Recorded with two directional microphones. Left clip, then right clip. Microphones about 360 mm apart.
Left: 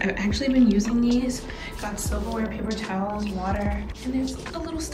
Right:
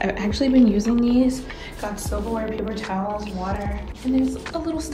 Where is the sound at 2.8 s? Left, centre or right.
Centre.